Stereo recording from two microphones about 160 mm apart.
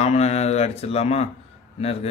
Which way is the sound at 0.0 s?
40° left (ahead or behind).